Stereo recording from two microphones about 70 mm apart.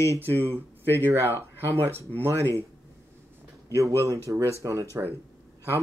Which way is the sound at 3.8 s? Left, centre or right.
Right.